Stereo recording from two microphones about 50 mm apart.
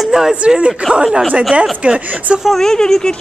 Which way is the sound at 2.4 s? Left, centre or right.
Centre.